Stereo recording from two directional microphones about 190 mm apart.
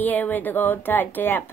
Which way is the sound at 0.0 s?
10° left (ahead or behind).